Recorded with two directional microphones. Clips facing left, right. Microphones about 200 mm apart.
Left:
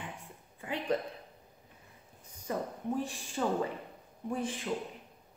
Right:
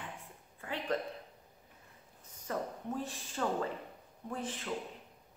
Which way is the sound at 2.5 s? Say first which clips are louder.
Left 3 dB; 15° left (ahead or behind).